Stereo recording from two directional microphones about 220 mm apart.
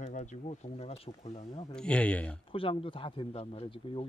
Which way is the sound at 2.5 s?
25° left (ahead or behind).